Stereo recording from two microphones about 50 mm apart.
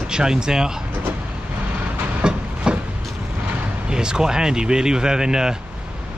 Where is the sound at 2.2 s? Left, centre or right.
Centre.